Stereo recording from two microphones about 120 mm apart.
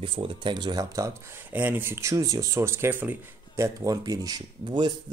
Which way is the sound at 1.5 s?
15° right (ahead or behind).